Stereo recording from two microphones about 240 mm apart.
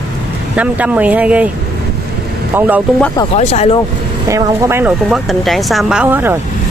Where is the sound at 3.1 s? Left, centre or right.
Left.